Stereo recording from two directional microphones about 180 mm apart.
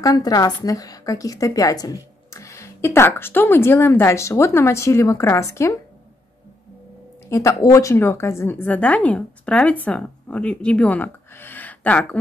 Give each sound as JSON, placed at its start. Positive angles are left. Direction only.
{"t": 0.0, "sound": "a woman's voice", "side_deg": 20}
{"t": 7.2, "sound": "a woman's voice", "side_deg": 15}